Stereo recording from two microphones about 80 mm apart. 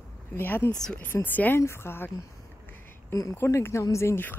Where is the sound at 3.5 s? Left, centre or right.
Left.